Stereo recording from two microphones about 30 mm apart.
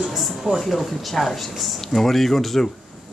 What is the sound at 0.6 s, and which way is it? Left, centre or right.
Speech, centre.